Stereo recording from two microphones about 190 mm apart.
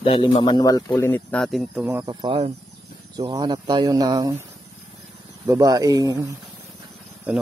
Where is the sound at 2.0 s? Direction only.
25° right (ahead or behind).